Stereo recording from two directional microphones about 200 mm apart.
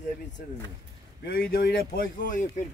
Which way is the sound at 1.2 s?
50° left (ahead or behind).